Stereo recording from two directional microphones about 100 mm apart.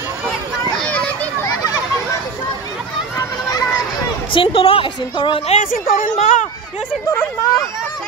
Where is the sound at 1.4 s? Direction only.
35° left (ahead or behind).